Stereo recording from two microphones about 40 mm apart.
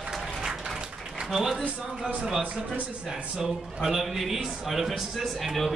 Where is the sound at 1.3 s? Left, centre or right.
Centre.